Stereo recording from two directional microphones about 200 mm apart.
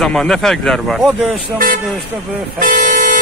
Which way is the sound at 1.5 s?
45° right (ahead or behind).